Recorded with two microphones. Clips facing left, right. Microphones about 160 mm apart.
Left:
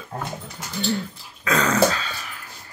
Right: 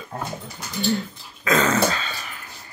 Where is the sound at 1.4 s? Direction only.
5° right (ahead or behind).